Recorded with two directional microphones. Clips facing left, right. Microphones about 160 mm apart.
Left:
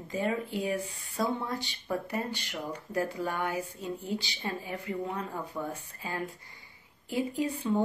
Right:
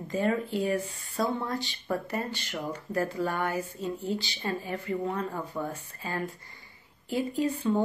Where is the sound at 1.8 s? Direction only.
10° left (ahead or behind).